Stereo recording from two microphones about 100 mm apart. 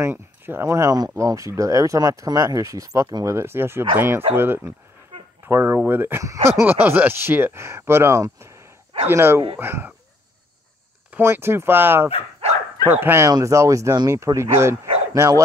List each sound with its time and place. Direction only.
0.0 s speech: 25° right (ahead or behind)
3.3 s speech: 25° right (ahead or behind)
11.1 s speech: 20° right (ahead or behind)
13.3 s speech: 30° right (ahead or behind)